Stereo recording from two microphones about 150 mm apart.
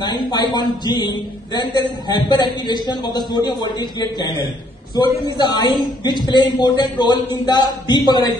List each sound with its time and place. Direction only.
0.3 s a man's voice: 30° left (ahead or behind)